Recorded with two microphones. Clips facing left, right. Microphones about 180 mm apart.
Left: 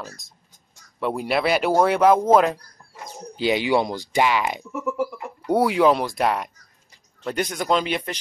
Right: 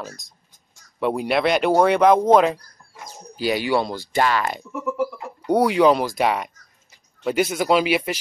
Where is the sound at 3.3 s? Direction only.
20° left (ahead or behind).